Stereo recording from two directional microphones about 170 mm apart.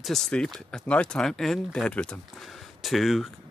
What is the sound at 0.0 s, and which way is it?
Speech, 5° left (ahead or behind).